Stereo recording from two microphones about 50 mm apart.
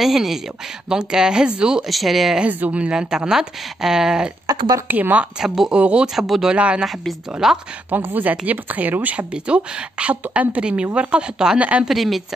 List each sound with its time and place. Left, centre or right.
0.0 s speech: centre
1.9 s speech: centre
2.4 s speech: right; by 4.3 s centre
4.8 s speech: right
5.7 s speech: right
6.1 s speech: centre
6.4 s speech: right
7.4 s speech: centre
7.9 s a woman's voice: right
9.3 s a woman's voice: right
10.6 s speech: right
11.5 s speech: right
11.9 s speech: centre